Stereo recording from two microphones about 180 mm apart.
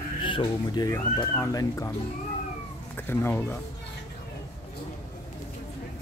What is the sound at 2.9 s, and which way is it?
Speech, 10° left (ahead or behind).